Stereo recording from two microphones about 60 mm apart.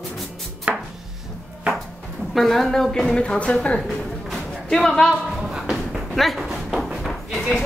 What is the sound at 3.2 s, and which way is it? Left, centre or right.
Speech, centre.